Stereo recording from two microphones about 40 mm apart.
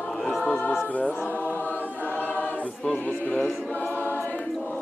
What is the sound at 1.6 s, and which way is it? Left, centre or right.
Choir, left.